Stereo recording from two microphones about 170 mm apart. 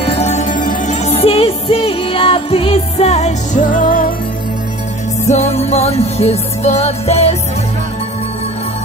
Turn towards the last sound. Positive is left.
turn(degrees=40)  # may be behind; listen again after turning